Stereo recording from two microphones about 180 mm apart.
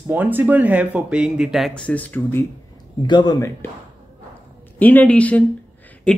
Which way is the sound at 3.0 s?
25° left (ahead or behind).